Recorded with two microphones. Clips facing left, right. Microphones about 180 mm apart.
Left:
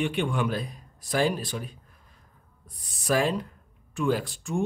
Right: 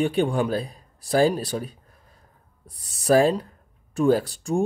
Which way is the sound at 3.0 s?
35° right (ahead or behind).